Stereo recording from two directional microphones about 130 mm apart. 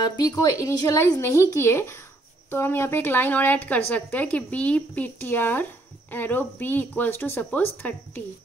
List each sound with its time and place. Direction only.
0.0 s speech: 30° left (ahead or behind); by 8.2 s 15° left (ahead or behind)